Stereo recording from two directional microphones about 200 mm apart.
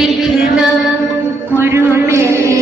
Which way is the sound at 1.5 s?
10° right (ahead or behind).